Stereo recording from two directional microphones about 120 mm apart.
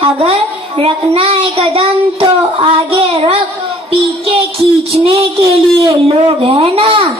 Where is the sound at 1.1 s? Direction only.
55° right (ahead or behind).